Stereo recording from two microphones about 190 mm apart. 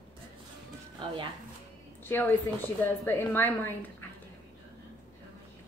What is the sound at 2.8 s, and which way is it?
Speech, 10° left (ahead or behind).